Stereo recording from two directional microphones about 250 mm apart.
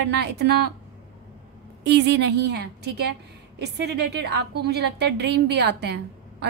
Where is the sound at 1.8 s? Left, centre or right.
Right.